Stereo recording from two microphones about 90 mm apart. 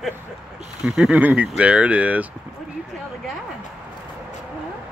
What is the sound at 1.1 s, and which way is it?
Speech, 15° right (ahead or behind).